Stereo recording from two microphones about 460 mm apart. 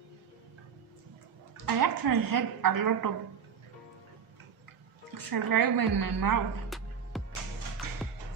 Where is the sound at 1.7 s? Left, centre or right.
Right.